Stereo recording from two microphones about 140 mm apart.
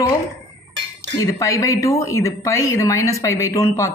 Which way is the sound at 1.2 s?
20° left (ahead or behind).